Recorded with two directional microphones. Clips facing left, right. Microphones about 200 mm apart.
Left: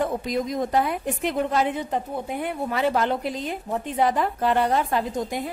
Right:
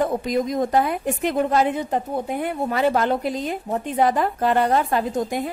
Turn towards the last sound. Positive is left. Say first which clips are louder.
# right 3 dB
turn(degrees=-55)  # may be behind; listen again after turning